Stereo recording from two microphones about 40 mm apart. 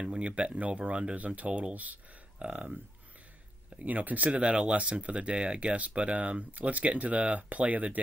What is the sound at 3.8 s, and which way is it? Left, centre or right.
Speech, right.